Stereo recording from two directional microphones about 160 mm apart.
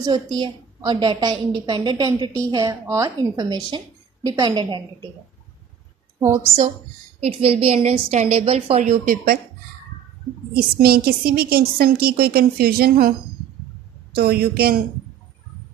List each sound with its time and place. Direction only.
0.4 s a woman's voice: 30° right (ahead or behind)
6.1 s a woman's voice: 15° right (ahead or behind)
7.2 s a woman's voice: 40° right (ahead or behind)
9.0 s speech: 65° right (ahead or behind)
10.5 s a woman's voice: 75° right (ahead or behind)
14.1 s a woman's voice: 75° right (ahead or behind)